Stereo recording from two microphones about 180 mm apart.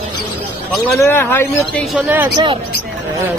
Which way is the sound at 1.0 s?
15° left (ahead or behind).